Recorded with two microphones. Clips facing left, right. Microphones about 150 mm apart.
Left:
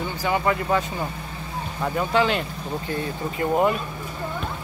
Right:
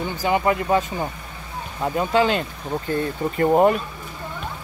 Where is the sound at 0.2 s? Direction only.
20° right (ahead or behind).